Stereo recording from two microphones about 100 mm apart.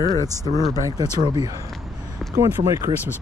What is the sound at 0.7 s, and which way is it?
Speech, 35° right (ahead or behind).